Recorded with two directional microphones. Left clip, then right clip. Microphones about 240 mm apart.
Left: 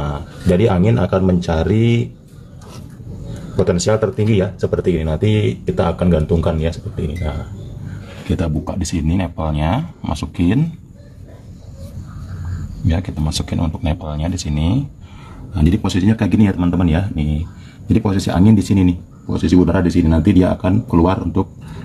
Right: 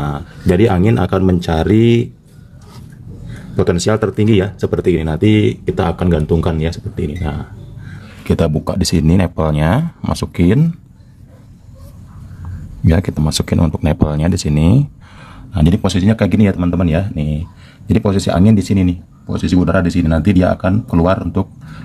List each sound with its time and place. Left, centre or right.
0.0 s speech: right
3.6 s speech: right
9.0 s speech: right
12.8 s speech: right
15.5 s speech: right